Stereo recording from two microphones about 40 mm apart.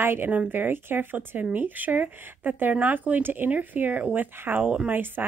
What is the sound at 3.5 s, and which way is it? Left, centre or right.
Speech, right.